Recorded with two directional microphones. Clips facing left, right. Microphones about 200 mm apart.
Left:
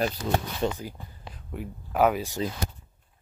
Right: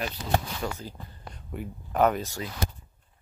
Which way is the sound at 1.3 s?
Centre (ahead or behind).